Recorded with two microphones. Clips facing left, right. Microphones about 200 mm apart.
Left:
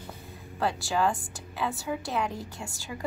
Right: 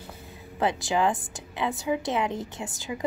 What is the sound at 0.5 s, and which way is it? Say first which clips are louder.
A woman's voice: right 3 dB; 20° right (ahead or behind).